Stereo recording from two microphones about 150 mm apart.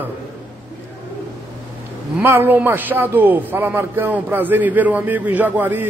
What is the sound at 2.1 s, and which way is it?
A man's voice, 15° right (ahead or behind).